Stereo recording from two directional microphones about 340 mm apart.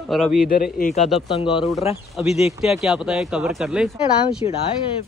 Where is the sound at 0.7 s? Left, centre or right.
Left.